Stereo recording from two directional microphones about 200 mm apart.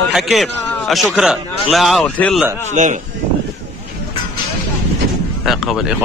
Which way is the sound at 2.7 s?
40° right (ahead or behind).